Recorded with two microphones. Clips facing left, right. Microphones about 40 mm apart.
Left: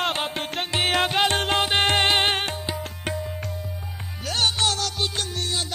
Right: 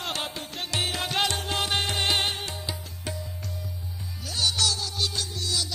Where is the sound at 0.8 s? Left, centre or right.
Left.